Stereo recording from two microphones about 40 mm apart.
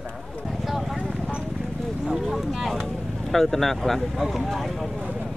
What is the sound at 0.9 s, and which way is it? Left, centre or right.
Clip-clop, centre.